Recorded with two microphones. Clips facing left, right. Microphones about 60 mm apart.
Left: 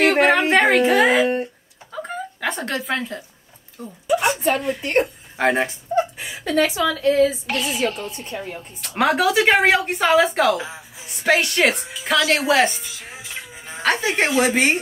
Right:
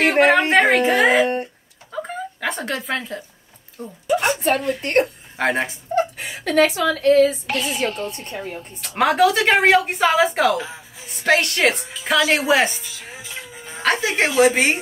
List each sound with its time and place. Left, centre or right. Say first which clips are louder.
0.0 s music: right 1 dB; centre
1.9 s chuckle: right 1 dB; centre
3.8 s speech: even; centre
6.3 s a woman's voice: right 2 dB; right
6.6 s a woman's voice: right 2 dB; right
7.4 s speech: even; centre
8.8 s speech: right 2 dB; centre